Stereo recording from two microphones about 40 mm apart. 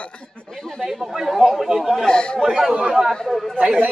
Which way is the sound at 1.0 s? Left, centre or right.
Centre.